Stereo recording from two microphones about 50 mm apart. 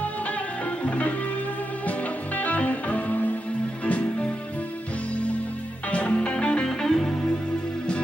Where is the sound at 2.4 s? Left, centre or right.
Left.